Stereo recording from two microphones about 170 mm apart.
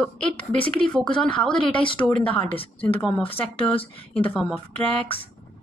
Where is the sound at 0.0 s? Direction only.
10° left (ahead or behind).